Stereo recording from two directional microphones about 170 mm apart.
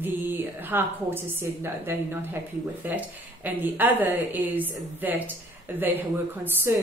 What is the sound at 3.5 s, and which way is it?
Speech, 10° right (ahead or behind).